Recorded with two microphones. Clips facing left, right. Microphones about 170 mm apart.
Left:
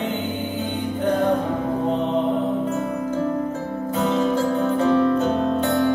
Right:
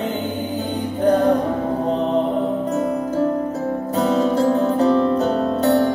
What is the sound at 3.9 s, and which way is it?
Music, 35° right (ahead or behind).